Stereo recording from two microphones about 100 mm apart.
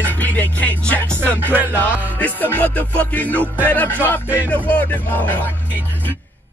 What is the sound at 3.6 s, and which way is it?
Speech, 20° left (ahead or behind).